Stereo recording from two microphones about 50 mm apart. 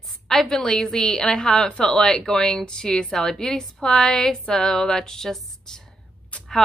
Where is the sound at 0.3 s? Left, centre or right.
Centre.